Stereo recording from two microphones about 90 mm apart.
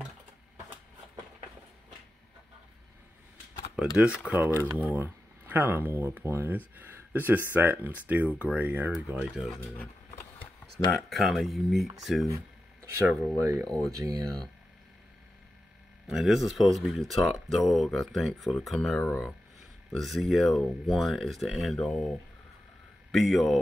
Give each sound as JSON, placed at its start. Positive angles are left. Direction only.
{"t": 3.7, "sound": "speech", "side_deg": -10}
{"t": 4.4, "sound": "speech", "side_deg": -25}
{"t": 9.4, "sound": "speech", "side_deg": 0}
{"t": 10.9, "sound": "speech", "side_deg": 0}
{"t": 12.4, "sound": "a sound", "side_deg": -30}
{"t": 13.7, "sound": "speech", "side_deg": 0}
{"t": 13.9, "sound": "speech", "side_deg": -40}
{"t": 16.1, "sound": "speech", "side_deg": -5}
{"t": 20.0, "sound": "speech", "side_deg": 0}
{"t": 23.1, "sound": "speech", "side_deg": 0}